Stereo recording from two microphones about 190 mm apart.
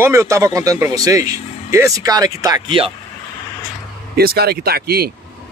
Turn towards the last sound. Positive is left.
turn(degrees=-55)  # may be behind; listen again after turning